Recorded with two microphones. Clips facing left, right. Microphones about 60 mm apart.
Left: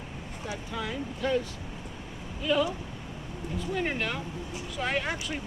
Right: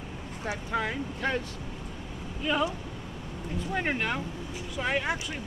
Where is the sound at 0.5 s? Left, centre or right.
Right.